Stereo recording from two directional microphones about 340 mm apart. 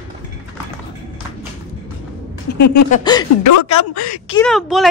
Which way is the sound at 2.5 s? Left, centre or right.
Left.